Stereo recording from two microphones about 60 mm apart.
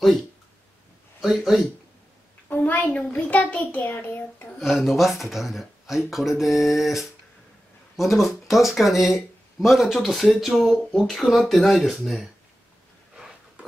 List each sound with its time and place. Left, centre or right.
1.2 s speech: centre
2.5 s a sound: left
3.1 s child singing: left
4.6 s speech: centre